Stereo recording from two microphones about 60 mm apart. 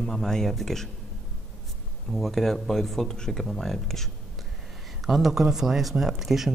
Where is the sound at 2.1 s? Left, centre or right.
Centre.